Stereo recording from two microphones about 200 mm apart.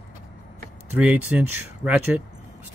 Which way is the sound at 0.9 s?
5° right (ahead or behind).